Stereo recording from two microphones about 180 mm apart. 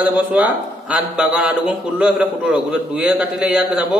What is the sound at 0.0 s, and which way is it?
Speech, 10° right (ahead or behind).